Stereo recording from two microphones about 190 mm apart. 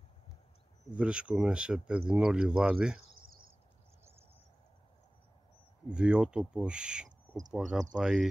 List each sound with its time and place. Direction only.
0.9 s speech: 5° right (ahead or behind)
3.1 s cricket: 50° right (ahead or behind)
5.9 s speech: 5° right (ahead or behind)